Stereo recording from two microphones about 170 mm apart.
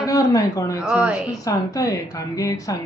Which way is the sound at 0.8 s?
5° right (ahead or behind).